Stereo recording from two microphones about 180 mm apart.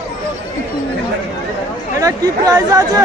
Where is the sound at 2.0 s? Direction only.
20° right (ahead or behind).